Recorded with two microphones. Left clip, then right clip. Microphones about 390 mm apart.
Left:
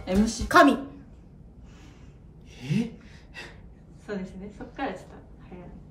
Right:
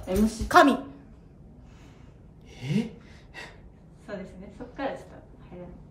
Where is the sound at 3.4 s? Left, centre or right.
Right.